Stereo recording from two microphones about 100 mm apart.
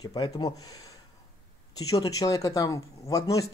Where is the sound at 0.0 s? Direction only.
40° left (ahead or behind).